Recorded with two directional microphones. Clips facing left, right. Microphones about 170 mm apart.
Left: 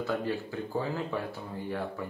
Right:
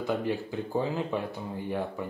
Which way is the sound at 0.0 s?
15° right (ahead or behind).